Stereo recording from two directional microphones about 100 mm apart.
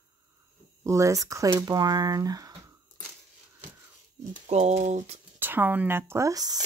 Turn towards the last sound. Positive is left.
turn(degrees=-40)  # may be behind; listen again after turning